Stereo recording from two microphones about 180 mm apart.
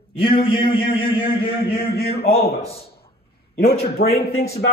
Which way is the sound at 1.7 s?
60° left (ahead or behind).